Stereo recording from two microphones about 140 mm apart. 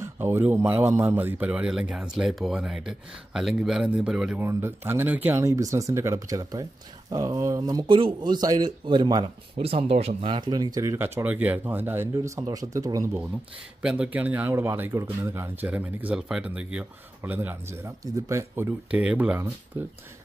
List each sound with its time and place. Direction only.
0.0 s speech: 15° right (ahead or behind)
4.4 s speech: 15° right (ahead or behind)
13.8 s speech: 5° right (ahead or behind)